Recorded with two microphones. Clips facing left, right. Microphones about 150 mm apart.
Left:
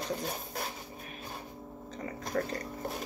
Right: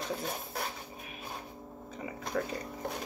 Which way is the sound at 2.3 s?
5° left (ahead or behind).